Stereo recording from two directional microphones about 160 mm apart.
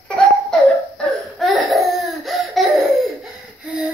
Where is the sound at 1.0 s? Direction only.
Centre (ahead or behind).